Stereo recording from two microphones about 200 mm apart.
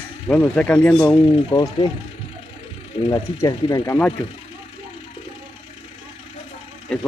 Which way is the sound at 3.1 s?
20° left (ahead or behind).